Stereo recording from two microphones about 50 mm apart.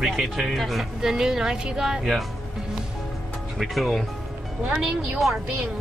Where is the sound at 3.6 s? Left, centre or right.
Centre.